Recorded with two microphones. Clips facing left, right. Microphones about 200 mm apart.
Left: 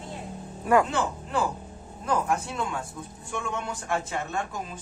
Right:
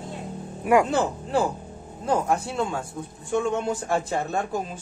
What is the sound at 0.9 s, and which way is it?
A man's voice, 30° right (ahead or behind).